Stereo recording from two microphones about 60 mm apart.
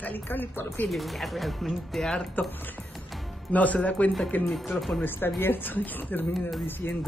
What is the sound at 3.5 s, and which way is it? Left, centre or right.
Speech, left.